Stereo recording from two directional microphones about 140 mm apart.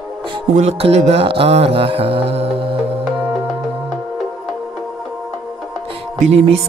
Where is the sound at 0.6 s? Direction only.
50° right (ahead or behind).